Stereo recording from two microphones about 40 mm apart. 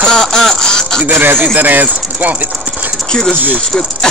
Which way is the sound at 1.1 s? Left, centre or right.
Right.